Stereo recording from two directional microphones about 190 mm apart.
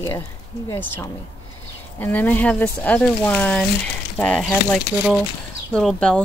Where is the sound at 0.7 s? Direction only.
20° left (ahead or behind).